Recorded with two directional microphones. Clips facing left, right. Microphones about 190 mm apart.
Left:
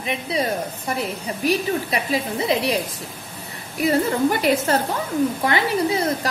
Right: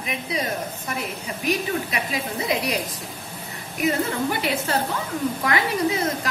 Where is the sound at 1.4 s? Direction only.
30° left (ahead or behind).